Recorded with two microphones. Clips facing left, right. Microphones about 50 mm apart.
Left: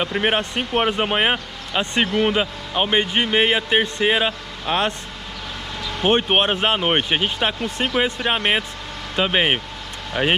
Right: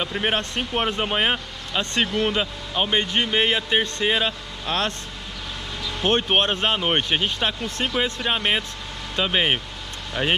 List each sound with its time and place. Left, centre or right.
0.0 s speech: centre